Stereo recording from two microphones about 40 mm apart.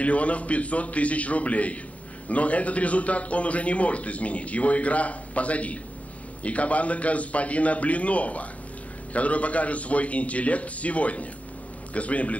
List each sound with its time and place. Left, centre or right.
0.0 s a man's voice: left